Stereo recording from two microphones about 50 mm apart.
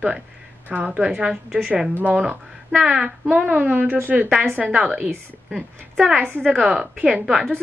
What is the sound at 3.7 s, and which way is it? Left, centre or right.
Speech, right.